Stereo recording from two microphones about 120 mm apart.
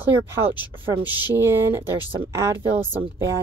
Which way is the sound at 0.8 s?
15° right (ahead or behind).